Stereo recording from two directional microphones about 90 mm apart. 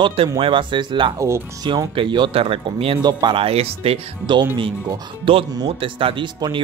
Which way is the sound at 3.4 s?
90° right.